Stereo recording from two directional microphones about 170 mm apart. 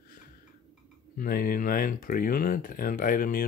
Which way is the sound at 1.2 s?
55° left (ahead or behind).